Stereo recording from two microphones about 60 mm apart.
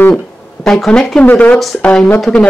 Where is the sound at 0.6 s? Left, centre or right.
Centre.